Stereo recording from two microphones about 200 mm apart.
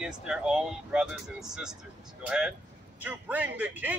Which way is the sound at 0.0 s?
5° right (ahead or behind).